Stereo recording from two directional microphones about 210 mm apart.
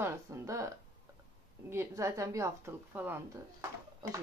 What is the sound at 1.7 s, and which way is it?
A woman's voice, 15° right (ahead or behind).